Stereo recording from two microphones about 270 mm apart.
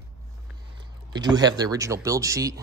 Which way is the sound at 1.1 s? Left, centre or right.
Centre.